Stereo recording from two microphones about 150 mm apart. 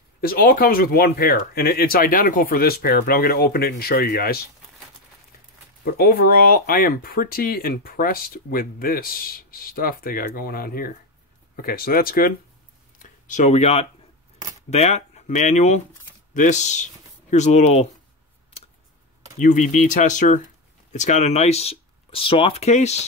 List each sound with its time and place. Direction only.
0.2 s speech: 85° left
5.9 s speech: 90° left
13.0 s speech: 55° left (ahead or behind)
19.3 s speech: 55° left (ahead or behind)